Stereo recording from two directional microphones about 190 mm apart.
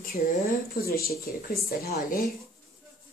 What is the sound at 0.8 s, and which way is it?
A woman's voice, 55° left (ahead or behind).